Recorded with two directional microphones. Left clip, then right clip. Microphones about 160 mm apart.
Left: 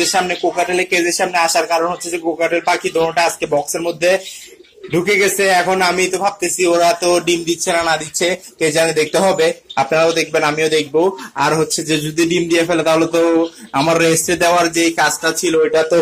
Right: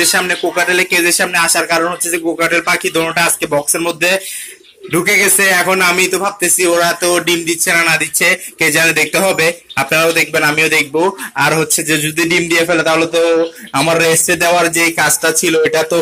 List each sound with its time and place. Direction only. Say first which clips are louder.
0.0 s speech: right 2 dB; centre (ahead or behind)
15.2 s speech: right 2 dB; 20° right (ahead or behind)